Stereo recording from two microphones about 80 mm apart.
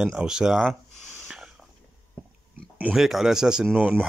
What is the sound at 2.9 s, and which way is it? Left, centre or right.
Speech, centre.